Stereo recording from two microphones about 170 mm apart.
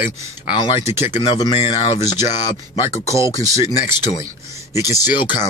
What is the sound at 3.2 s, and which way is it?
Speech, 20° right (ahead or behind).